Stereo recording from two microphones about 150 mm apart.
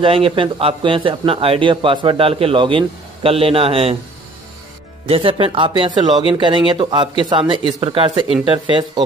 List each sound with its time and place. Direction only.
0.0 s a man's voice: 35° right (ahead or behind)
5.0 s a man's voice: 40° right (ahead or behind)